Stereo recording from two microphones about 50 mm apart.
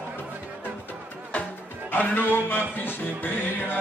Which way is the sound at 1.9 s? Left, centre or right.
Left.